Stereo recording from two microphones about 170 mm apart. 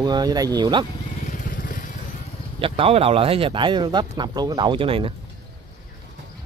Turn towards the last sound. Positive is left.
turn(degrees=-30)  # may be behind; listen again after turning